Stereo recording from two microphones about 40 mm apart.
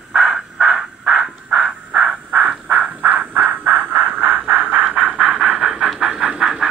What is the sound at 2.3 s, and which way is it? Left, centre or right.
Crow, right.